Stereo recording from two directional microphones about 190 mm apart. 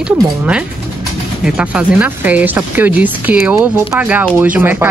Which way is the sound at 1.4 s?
5° right (ahead or behind).